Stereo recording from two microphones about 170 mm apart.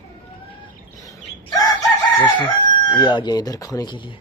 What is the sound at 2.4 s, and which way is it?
Chicken, 25° left (ahead or behind).